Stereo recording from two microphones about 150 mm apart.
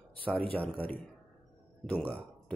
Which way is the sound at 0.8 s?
10° left (ahead or behind).